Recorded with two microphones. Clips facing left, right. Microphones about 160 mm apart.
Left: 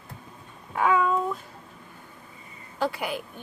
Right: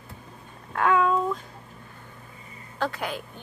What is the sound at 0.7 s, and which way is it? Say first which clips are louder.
Speech: right 1 dB; 5° left (ahead or behind).